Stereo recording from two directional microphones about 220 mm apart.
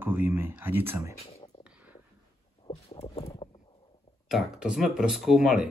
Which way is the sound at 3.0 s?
25° left (ahead or behind).